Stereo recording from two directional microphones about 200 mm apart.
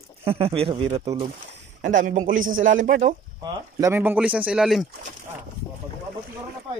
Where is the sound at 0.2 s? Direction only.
30° right (ahead or behind).